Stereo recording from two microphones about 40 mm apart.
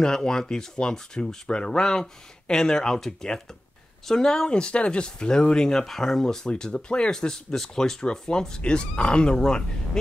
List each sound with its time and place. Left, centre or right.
0.0 s speech: centre
6.5 s speech: left
7.1 s speech: centre